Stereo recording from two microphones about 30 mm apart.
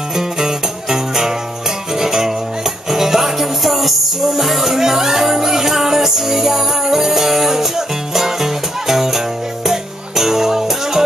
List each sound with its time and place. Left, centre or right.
0.1 s music: centre